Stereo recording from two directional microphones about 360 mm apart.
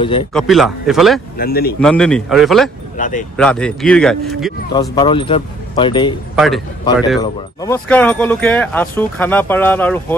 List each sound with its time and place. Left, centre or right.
0.0 s speech: centre
0.3 s speech: centre
1.4 s speech: left
1.8 s speech: centre
3.0 s speech: left
3.3 s speech: centre
4.7 s speech: centre
6.3 s a man's voice: centre